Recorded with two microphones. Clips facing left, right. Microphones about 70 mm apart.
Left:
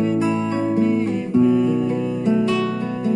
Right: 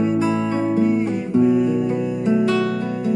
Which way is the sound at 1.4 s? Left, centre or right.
Centre.